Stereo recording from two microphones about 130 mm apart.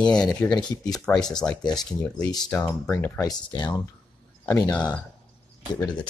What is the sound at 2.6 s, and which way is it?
Speech, 25° left (ahead or behind).